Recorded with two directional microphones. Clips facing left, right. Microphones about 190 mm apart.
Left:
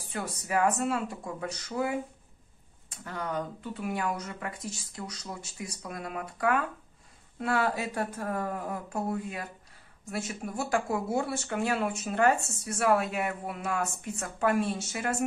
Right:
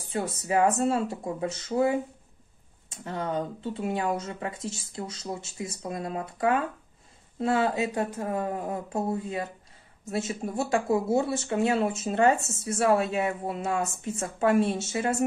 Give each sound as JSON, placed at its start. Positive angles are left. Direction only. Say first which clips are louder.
{"t": 0.1, "sound": "speech", "louder": "right 4 dB", "side_deg": -25}